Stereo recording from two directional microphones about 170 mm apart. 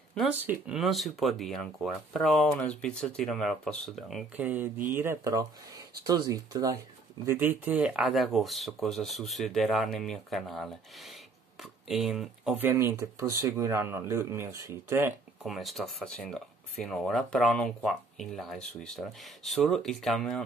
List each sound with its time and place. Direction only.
0.3 s speech: 5° right (ahead or behind)
4.4 s speech: 10° right (ahead or behind)
15.4 s speech: centre (ahead or behind)